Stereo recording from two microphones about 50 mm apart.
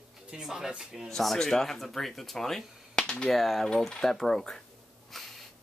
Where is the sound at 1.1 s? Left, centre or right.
Centre.